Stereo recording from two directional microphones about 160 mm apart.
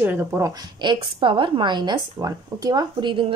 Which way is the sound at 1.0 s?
30° right (ahead or behind).